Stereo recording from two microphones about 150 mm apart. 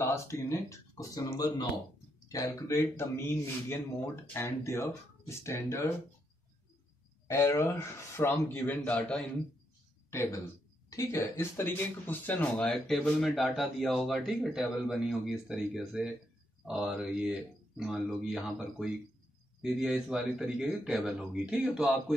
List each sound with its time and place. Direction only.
0.0 s a man's voice: 20° left (ahead or behind)
7.2 s a man's voice: 20° left (ahead or behind)
10.9 s speech: 20° left (ahead or behind); by 22.1 s centre (ahead or behind)